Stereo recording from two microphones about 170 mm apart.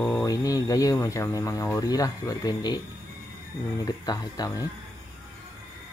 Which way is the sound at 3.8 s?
25° left (ahead or behind).